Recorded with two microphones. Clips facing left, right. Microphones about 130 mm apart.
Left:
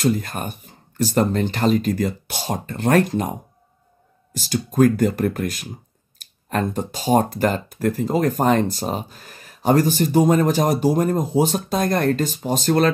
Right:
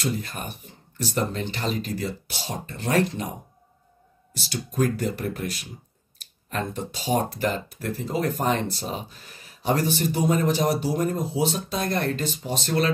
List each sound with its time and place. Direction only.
0.0 s speech: 50° left (ahead or behind)